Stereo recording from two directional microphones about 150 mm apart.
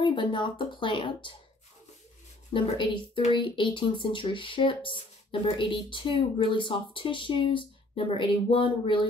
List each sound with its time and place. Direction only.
0.0 s speech: 35° left (ahead or behind)
2.5 s speech: 30° left (ahead or behind)